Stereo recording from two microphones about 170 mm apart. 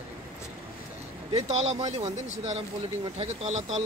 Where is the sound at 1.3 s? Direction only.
40° right (ahead or behind).